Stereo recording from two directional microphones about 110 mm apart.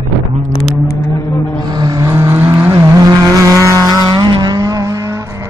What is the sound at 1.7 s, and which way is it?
Vehicle, 35° right (ahead or behind).